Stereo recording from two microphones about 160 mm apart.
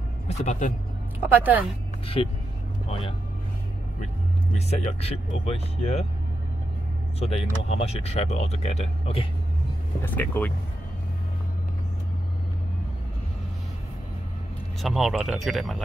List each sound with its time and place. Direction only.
0.3 s speech: 45° left (ahead or behind)
1.2 s speech: 10° right (ahead or behind)
2.2 s speech: 35° left (ahead or behind)
4.6 s speech: 40° left (ahead or behind)
7.2 s speech: 40° left (ahead or behind)
10.0 s speech: 10° left (ahead or behind)
14.8 s speech: centre (ahead or behind)